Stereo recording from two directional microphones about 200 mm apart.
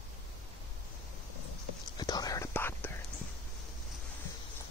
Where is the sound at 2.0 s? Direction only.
20° left (ahead or behind).